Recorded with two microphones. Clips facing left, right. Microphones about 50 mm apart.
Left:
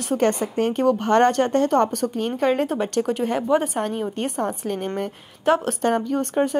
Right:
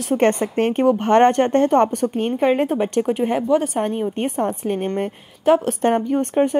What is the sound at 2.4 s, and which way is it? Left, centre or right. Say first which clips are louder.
Speech: right 3 dB; centre.